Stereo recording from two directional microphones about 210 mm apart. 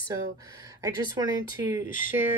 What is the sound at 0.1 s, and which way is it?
Speech, 15° right (ahead or behind).